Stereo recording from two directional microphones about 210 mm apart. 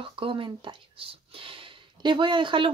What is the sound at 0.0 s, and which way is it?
Speech, 25° right (ahead or behind).